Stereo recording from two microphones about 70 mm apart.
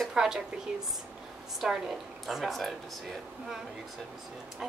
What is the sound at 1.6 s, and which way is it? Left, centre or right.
Speech, centre.